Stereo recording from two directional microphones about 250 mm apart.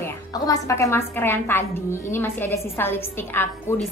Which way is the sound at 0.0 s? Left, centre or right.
Centre.